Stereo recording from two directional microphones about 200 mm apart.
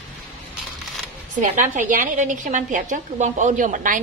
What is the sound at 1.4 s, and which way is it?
A woman's voice, 40° right (ahead or behind).